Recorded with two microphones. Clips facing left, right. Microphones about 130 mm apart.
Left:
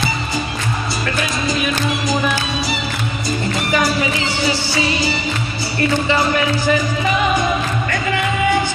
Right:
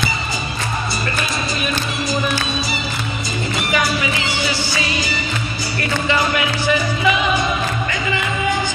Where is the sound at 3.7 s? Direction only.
35° left (ahead or behind).